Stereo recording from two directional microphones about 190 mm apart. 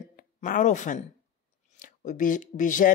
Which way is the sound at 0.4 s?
40° left (ahead or behind).